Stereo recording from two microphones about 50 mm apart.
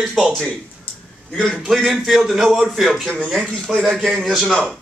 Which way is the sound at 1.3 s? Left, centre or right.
Centre.